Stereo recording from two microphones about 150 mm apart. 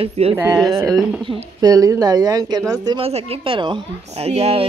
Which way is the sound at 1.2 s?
30° right (ahead or behind).